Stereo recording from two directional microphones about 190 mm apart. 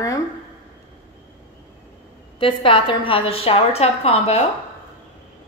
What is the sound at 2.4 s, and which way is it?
A woman's voice, 25° left (ahead or behind).